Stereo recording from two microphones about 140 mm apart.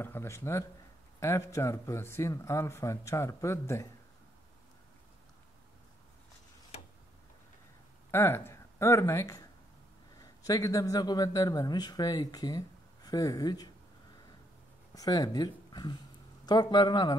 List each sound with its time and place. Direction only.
0.0 s a man's voice: 15° left (ahead or behind)
8.1 s a man's voice: 15° left (ahead or behind)
15.0 s a man's voice: 25° left (ahead or behind)